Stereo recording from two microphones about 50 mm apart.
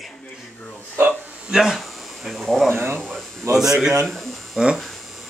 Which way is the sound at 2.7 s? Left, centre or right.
Right.